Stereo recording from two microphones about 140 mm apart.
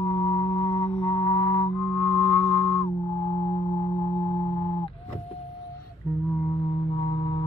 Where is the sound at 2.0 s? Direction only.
35° left (ahead or behind).